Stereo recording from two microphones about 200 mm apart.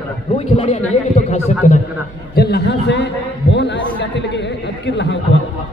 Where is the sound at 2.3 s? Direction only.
55° left (ahead or behind).